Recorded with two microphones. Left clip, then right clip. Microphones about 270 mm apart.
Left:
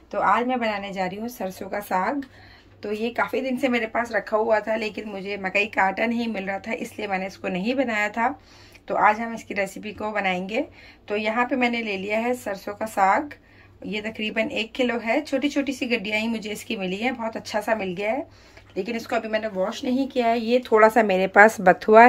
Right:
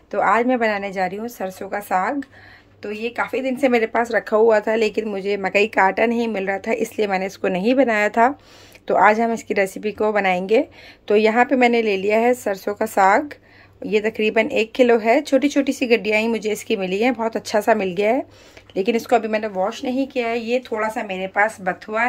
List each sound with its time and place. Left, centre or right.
0.1 s a woman's voice: centre; by 22.0 s left